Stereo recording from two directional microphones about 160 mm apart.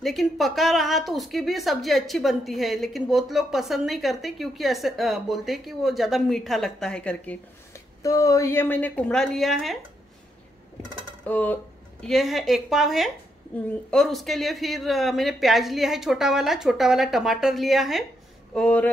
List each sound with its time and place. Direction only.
0.0 s a woman's voice: centre (ahead or behind)
8.0 s a woman's voice: 20° left (ahead or behind); by 9.8 s centre (ahead or behind)
11.2 s a woman's voice: 10° left (ahead or behind)
12.0 s a woman's voice: centre (ahead or behind)